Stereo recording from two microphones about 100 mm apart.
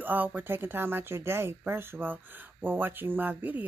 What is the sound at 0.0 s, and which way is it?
Speech, 20° right (ahead or behind).